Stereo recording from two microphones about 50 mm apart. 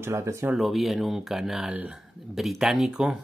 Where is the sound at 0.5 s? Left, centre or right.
Centre.